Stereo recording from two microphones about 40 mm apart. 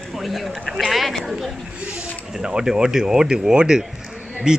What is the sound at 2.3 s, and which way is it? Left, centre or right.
Speech, centre.